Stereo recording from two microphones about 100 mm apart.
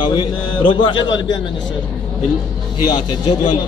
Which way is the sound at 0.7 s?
50° left (ahead or behind).